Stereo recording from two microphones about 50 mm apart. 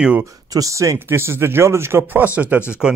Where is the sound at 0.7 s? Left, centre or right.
Right.